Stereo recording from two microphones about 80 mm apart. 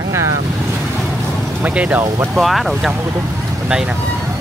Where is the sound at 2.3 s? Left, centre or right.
Centre.